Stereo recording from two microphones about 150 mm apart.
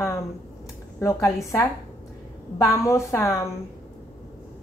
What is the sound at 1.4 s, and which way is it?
A woman's voice, 20° left (ahead or behind).